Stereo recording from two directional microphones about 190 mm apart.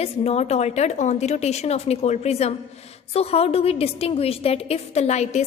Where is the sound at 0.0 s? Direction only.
35° left (ahead or behind).